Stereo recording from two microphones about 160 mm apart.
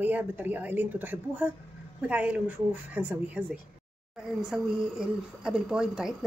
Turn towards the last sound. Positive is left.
turn(degrees=-5)  # may be behind; listen again after turning